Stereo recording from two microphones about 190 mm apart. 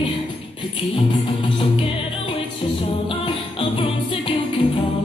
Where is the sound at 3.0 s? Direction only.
30° left (ahead or behind).